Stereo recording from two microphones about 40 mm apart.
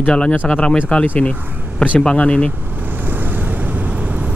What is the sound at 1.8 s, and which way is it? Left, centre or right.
Speech, left.